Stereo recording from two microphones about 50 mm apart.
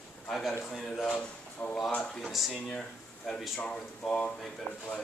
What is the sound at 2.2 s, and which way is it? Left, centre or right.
A man's voice, centre.